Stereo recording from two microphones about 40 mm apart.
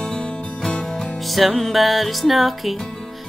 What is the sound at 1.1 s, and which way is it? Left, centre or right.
Music, centre.